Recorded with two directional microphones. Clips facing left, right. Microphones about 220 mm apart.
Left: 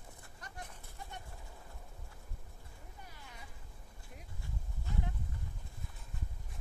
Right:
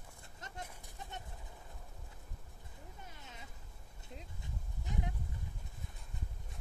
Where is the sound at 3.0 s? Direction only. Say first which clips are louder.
Right 1 dB; 20° right (ahead or behind).